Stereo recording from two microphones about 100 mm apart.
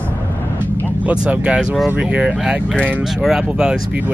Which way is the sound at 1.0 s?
15° right (ahead or behind).